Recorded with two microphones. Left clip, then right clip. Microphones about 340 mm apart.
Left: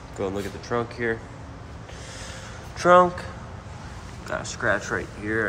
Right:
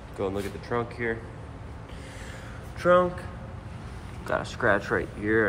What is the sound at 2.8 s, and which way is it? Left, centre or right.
Speech, centre.